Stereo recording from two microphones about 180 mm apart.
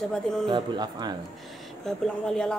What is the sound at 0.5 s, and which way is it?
Speech, 25° right (ahead or behind).